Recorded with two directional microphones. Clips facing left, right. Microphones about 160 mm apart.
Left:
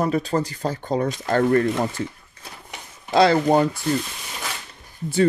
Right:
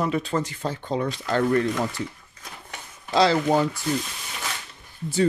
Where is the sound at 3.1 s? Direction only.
55° left (ahead or behind).